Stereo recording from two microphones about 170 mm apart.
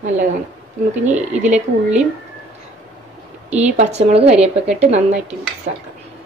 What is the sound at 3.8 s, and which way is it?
Speech, 40° right (ahead or behind).